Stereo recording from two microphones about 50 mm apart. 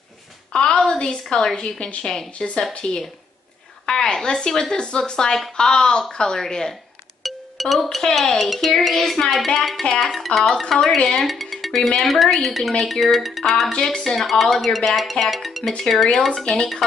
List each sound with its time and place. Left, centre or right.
0.5 s a woman's voice: centre
7.2 s music: centre
8.0 s speech: centre
9.8 s speech: centre
10.1 s speech: centre
11.2 s speech: centre
13.7 s speech: centre
16.5 s speech: centre